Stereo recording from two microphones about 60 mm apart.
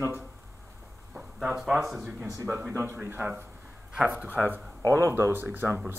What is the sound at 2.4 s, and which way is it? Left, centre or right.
Speech, right.